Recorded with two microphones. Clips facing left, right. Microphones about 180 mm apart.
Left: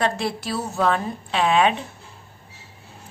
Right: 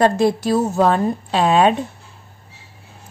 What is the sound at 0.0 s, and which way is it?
A woman's voice, 45° right (ahead or behind).